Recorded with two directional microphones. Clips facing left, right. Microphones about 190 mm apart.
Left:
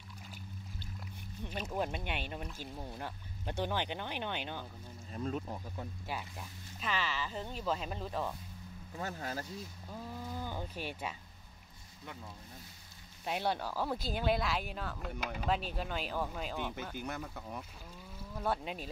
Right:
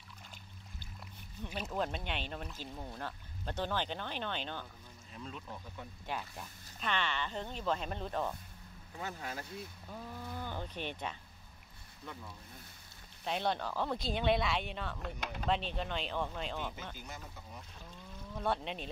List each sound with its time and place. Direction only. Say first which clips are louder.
1.7 s speech: even; 10° left (ahead or behind)
5.1 s speech: left 8 dB; 45° left (ahead or behind)
6.8 s speech: right 1 dB; 5° left (ahead or behind)
9.0 s speech: left 2 dB; 40° left (ahead or behind)
9.8 s speech: left 3 dB; 10° left (ahead or behind)
13.2 s speech: even; 5° left (ahead or behind)
16.9 s speech: left 8 dB; 60° left (ahead or behind)
18.1 s speech: even; 5° left (ahead or behind)